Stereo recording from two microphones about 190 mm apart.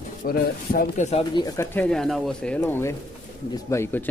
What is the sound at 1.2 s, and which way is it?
Speech, 20° left (ahead or behind).